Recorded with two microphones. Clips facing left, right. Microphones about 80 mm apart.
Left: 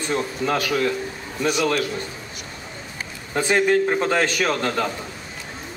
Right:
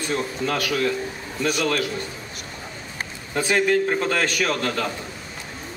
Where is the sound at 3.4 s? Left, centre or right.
Centre.